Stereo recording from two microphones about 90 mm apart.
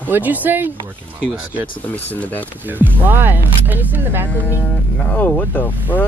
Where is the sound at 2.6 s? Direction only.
20° right (ahead or behind).